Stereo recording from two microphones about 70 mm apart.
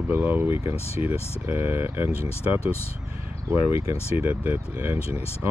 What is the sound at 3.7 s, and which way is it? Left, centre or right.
Speech, right.